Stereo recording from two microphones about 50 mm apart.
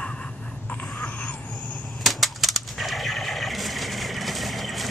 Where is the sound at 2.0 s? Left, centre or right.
Centre.